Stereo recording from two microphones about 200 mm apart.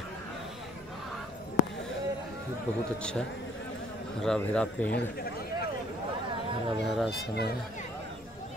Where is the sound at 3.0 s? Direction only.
5° left (ahead or behind).